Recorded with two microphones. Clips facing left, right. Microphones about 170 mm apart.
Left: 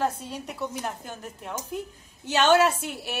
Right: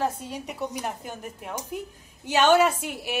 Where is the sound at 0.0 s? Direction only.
15° right (ahead or behind).